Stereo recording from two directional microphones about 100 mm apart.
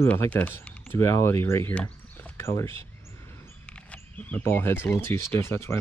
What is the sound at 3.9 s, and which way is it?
Speech, 15° left (ahead or behind).